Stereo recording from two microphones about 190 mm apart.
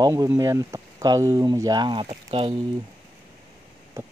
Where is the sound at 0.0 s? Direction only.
15° right (ahead or behind).